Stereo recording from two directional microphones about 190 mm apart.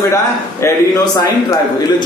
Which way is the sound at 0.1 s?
15° left (ahead or behind).